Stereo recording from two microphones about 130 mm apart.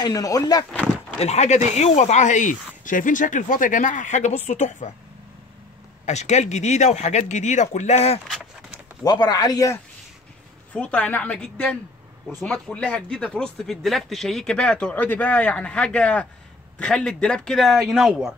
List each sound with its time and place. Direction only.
0.0 s speech: 30° left (ahead or behind)
1.2 s speech: 60° left (ahead or behind)
6.0 s speech: 65° left (ahead or behind)
9.0 s speech: 30° left (ahead or behind)
10.7 s a man's voice: 10° left (ahead or behind)